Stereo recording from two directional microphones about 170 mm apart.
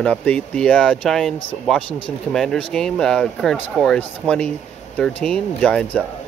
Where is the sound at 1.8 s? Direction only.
30° left (ahead or behind).